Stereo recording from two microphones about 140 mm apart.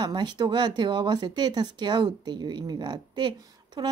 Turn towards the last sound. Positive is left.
turn(degrees=-30)  # may be behind; listen again after turning